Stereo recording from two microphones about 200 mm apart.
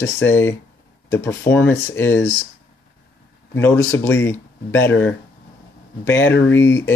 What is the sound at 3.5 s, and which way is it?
Speech, 10° left (ahead or behind).